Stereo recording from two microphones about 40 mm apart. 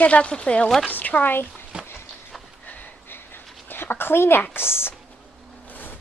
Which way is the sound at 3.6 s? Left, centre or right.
Left.